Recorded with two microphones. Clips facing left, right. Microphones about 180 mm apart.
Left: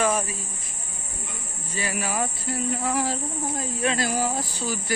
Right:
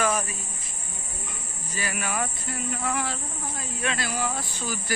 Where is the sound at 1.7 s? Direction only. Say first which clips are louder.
Left 2 dB; 25° left (ahead or behind).